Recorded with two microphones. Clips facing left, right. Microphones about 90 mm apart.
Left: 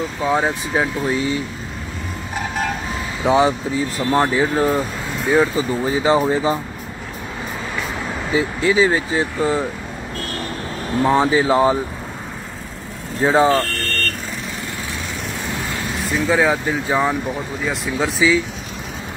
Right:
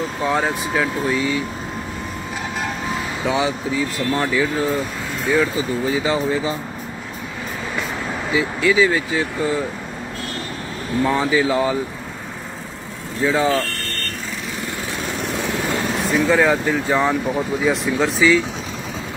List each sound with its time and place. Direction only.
0.2 s speech: 10° left (ahead or behind)
0.7 s speech: 30° left (ahead or behind)
3.3 s speech: 35° left (ahead or behind)
8.3 s speech: 30° left (ahead or behind)
11.0 s speech: 35° left (ahead or behind)
13.2 s speech: 30° left (ahead or behind)
16.3 s speech: 15° left (ahead or behind)